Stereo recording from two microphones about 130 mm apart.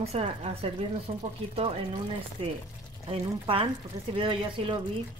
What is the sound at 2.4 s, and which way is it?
A woman's voice, 45° right (ahead or behind).